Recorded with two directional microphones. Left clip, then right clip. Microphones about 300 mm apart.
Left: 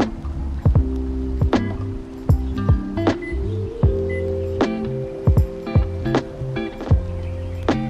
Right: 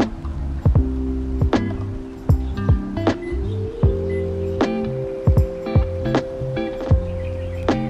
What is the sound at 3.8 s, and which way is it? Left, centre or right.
Wind chime, centre.